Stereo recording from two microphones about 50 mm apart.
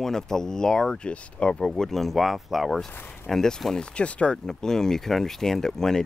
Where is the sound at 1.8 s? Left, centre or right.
Centre.